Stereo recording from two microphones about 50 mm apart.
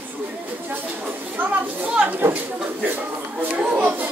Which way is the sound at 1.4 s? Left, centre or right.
Right.